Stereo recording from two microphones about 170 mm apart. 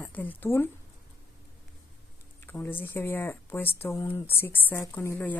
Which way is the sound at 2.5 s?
10° left (ahead or behind).